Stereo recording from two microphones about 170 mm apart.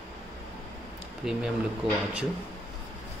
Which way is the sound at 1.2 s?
5° right (ahead or behind).